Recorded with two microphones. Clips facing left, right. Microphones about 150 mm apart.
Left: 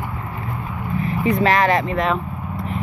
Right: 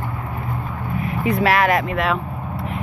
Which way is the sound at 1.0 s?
5° right (ahead or behind).